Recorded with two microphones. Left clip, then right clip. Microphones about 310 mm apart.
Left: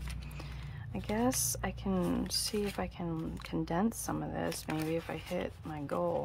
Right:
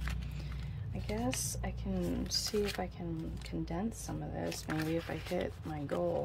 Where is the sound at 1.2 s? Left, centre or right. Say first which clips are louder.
Left 5 dB; left.